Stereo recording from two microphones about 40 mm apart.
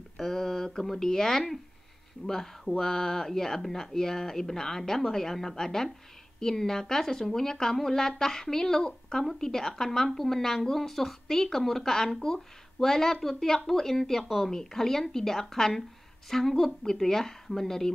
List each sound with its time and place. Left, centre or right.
0.2 s speech: centre